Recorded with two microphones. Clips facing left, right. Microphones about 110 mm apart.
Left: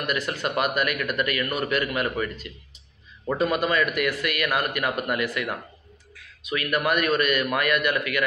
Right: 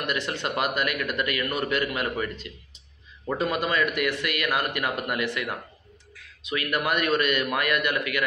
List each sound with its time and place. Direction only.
0.0 s speech: 25° right (ahead or behind)
3.7 s speech: 25° right (ahead or behind)